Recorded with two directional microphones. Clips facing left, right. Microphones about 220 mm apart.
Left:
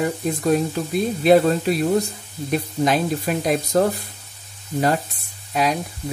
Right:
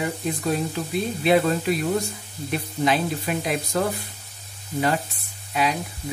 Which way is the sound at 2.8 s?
45° left (ahead or behind).